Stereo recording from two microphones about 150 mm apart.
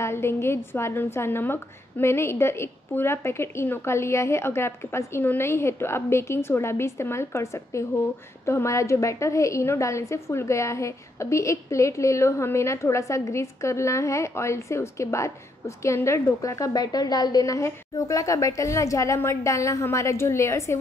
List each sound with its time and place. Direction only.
0.0 s a woman's voice: 15° left (ahead or behind)